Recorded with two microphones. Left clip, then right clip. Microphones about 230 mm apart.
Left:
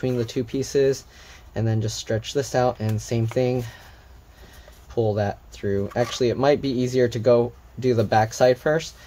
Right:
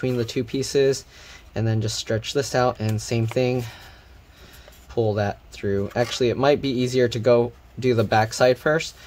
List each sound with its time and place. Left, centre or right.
0.0 s speech: centre
4.9 s speech: centre